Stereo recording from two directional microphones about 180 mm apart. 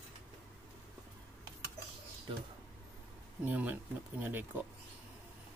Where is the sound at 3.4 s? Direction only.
10° right (ahead or behind).